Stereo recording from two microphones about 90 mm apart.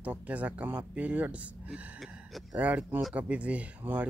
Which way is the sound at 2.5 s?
15° right (ahead or behind).